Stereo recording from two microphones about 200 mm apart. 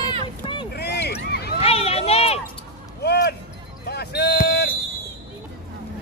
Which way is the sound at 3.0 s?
55° left (ahead or behind).